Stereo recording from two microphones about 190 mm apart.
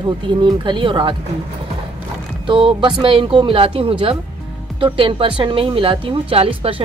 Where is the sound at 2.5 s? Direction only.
25° right (ahead or behind).